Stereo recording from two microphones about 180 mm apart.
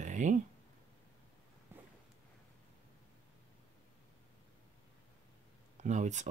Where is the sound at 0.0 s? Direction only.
45° right (ahead or behind).